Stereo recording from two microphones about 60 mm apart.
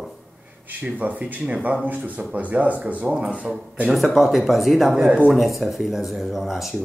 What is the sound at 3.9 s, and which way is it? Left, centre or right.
Speech, centre.